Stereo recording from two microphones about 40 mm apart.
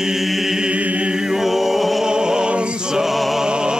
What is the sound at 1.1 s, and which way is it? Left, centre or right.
Chant, centre.